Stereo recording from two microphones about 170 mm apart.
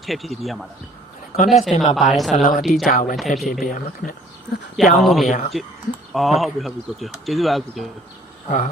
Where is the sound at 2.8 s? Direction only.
55° left (ahead or behind).